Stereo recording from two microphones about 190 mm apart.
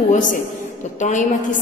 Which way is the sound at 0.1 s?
40° left (ahead or behind).